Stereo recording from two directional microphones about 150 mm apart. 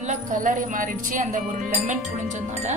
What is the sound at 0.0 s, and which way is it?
Speech, 55° right (ahead or behind).